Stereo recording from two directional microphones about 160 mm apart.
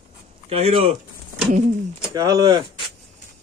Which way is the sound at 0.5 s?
40° right (ahead or behind).